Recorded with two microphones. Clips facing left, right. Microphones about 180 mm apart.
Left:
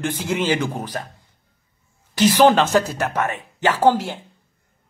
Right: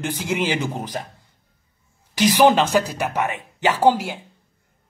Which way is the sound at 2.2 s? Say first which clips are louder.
Left 1 dB; 15° right (ahead or behind).